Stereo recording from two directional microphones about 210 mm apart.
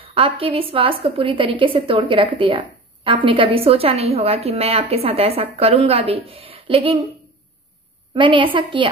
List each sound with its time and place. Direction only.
0.0 s a woman's voice: 25° right (ahead or behind)
8.1 s a woman's voice: 25° right (ahead or behind)